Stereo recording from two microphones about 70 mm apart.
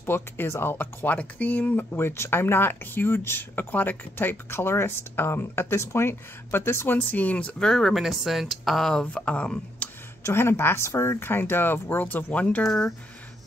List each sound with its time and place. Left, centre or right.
0.0 s speech: left
1.9 s speech: left
7.5 s speech: centre
9.0 s speech: centre
10.2 s speech: left; by 12.6 s centre
12.6 s speech: centre